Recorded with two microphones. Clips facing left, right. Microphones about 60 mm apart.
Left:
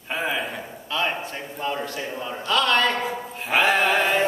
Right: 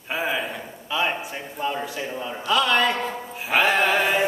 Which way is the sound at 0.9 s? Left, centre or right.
Centre.